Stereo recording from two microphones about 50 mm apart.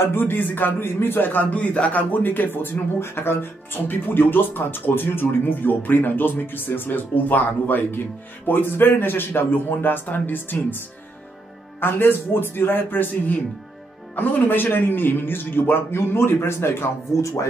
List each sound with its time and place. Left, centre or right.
0.0 s a man's voice: left
11.8 s a man's voice: left
14.1 s a man's voice: left
17.2 s music: left